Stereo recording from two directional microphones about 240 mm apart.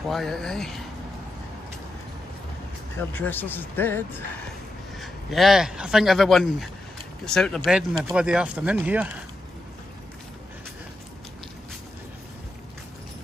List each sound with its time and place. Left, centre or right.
0.1 s speech: centre
3.1 s speech: centre